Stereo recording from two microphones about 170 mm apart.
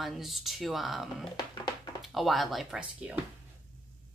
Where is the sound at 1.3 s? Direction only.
25° left (ahead or behind).